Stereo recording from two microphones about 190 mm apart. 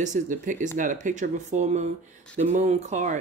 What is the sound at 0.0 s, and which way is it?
Speech, 40° right (ahead or behind).